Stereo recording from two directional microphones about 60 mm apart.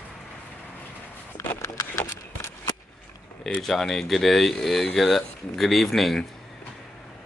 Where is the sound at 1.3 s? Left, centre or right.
Left.